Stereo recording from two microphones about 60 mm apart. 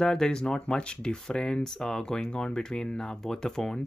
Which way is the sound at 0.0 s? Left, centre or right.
Centre.